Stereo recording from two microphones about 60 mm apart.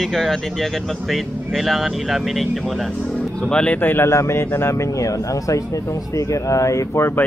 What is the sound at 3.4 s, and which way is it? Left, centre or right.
Speech, centre.